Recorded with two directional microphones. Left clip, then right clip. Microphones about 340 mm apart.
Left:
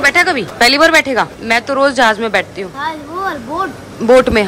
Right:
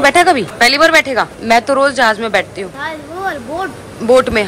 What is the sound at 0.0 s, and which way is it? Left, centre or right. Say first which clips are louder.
Speech: right 2 dB; centre.